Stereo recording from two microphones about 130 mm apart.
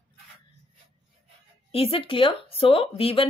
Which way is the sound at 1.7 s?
45° left (ahead or behind).